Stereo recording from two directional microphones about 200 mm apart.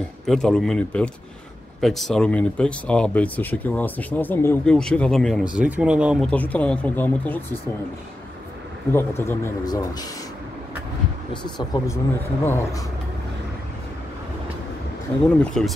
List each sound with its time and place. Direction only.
0.3 s speech: centre (ahead or behind)
8.9 s speech: 10° left (ahead or behind)
11.4 s speech: 20° left (ahead or behind)
15.2 s speech: 5° left (ahead or behind)